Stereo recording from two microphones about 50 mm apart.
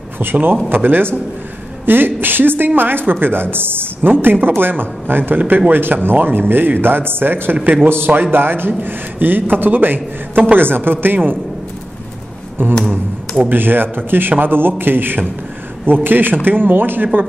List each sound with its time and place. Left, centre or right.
0.2 s a woman's voice: right
12.6 s a man's voice: right